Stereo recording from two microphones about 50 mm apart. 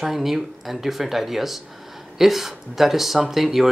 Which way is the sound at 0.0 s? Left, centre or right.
Centre.